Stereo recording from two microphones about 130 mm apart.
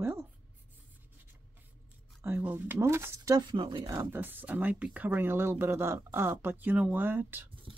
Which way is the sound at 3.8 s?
20° right (ahead or behind).